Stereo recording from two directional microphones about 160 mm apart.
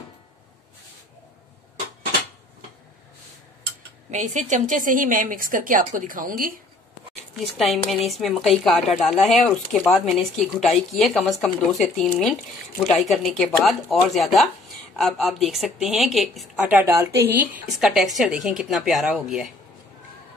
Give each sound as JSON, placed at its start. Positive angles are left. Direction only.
{"t": 4.1, "sound": "a woman's voice", "side_deg": -45}
{"t": 7.3, "sound": "a woman's voice", "side_deg": 0}
{"t": 16.6, "sound": "a woman's voice", "side_deg": -15}